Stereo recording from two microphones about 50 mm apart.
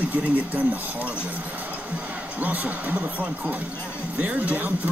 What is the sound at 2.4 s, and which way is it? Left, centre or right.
Speech, right.